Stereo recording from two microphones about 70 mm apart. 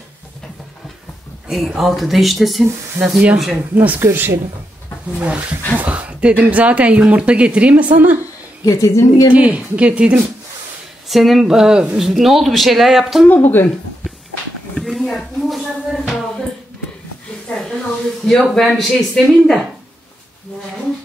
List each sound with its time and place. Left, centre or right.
1.5 s speech: centre
3.0 s speech: right
3.7 s speech: right
4.0 s speech: right
5.2 s speech: centre
8.6 s a woman's voice: left
9.3 s speech: centre
11.1 s speech: centre
13.3 s speech: left
14.8 s a sound: centre
18.2 s speech: centre